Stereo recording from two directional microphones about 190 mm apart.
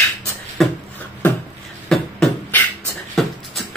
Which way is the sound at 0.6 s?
Centre (ahead or behind).